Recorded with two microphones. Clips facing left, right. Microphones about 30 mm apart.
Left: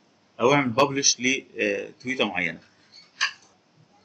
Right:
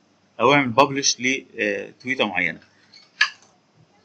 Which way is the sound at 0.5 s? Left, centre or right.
Right.